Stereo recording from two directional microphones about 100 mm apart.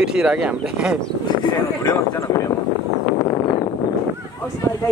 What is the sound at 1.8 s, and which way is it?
Speech, 30° left (ahead or behind).